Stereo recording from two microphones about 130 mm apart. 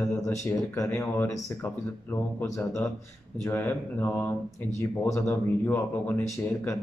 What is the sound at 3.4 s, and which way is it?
Mantra, 15° left (ahead or behind).